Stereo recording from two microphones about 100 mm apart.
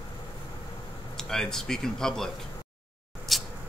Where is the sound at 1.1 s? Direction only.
5° left (ahead or behind).